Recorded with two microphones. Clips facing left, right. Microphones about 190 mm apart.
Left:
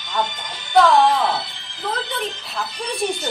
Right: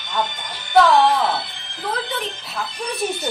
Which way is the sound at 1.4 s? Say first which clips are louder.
Right 1 dB; 55° right (ahead or behind).